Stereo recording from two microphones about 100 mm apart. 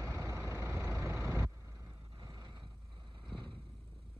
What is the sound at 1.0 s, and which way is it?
Vehicle, 20° right (ahead or behind).